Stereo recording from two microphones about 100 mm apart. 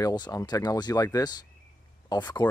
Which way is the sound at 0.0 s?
40° left (ahead or behind).